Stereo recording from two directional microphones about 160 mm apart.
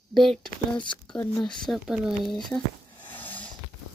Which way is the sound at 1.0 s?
5° left (ahead or behind).